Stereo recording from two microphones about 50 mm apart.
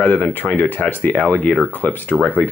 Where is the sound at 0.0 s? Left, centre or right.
Left.